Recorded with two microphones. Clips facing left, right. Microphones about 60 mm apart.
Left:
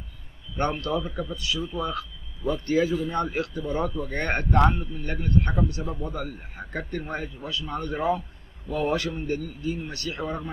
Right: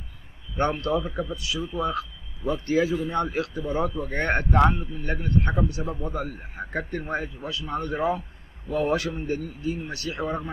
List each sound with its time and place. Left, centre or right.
0.6 s a man's voice: centre
0.9 s a man's voice: right